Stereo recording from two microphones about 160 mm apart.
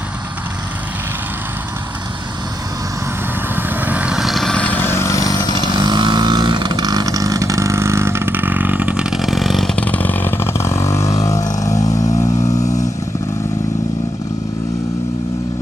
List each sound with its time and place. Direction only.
3.5 s vehicle: 10° right (ahead or behind); by 5.6 s 25° left (ahead or behind)
5.8 s vehicle: 25° right (ahead or behind); by 12.8 s 20° left (ahead or behind)